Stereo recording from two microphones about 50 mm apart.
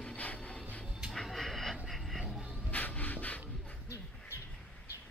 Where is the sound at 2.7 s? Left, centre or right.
Left.